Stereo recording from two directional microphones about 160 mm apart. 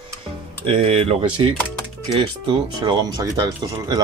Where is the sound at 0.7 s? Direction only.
35° right (ahead or behind).